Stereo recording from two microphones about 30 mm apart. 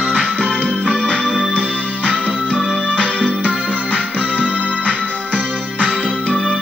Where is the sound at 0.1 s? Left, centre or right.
Left.